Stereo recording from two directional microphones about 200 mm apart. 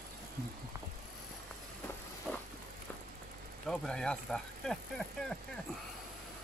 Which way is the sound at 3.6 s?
5° left (ahead or behind).